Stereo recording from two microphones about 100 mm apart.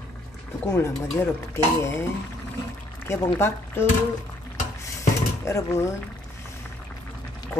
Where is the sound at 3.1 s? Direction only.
25° left (ahead or behind).